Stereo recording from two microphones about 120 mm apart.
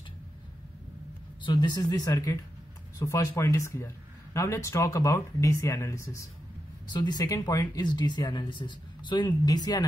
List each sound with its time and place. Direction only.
1.4 s speech: 40° left (ahead or behind)
6.9 s speech: 35° left (ahead or behind)